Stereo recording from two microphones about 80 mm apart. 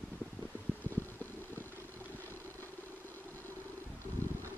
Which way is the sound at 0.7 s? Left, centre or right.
Centre.